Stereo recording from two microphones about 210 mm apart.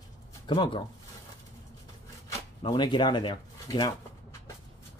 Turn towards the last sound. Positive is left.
turn(degrees=20)  # may be behind; listen again after turning